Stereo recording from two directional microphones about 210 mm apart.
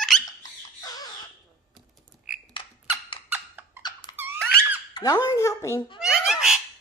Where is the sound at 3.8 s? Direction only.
20° left (ahead or behind).